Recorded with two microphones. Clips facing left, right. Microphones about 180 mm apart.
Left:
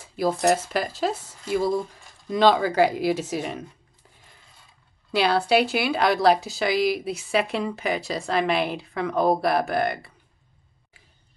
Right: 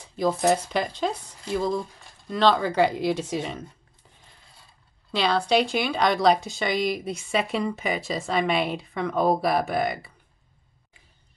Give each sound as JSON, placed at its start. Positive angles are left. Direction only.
{"t": 0.0, "sound": "speech", "side_deg": 5}
{"t": 5.1, "sound": "speech", "side_deg": 5}